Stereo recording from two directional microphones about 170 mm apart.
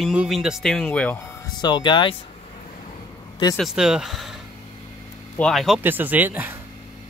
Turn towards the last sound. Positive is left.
turn(degrees=-10)  # may be behind; listen again after turning